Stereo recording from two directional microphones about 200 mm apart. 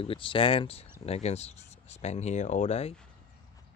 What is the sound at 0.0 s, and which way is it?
Speech, 25° left (ahead or behind).